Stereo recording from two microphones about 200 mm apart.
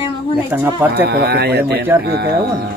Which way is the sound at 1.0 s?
55° right (ahead or behind).